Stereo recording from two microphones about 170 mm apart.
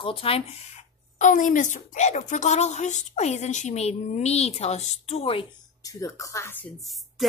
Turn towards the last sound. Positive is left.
turn(degrees=0)  # may be behind; listen again after turning